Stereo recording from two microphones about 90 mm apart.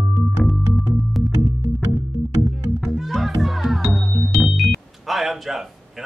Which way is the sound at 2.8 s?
Centre (ahead or behind).